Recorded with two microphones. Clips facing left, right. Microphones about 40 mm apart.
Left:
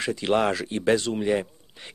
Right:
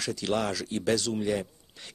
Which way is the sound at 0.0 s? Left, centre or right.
Left.